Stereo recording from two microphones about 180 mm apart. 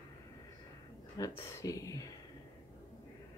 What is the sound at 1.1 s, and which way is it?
Speech, 20° left (ahead or behind).